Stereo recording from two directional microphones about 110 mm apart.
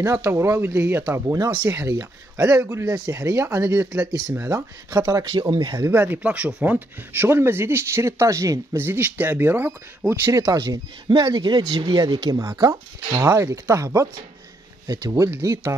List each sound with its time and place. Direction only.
0.0 s speech: 25° right (ahead or behind)
1.2 s speech: 35° right (ahead or behind)
5.5 s speech: 45° right (ahead or behind)
5.8 s speech: 20° right (ahead or behind)
10.5 s speech: 35° right (ahead or behind)
12.0 s speech: 35° right (ahead or behind)